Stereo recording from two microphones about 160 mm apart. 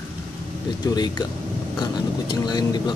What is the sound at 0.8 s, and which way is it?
Speech, 25° left (ahead or behind).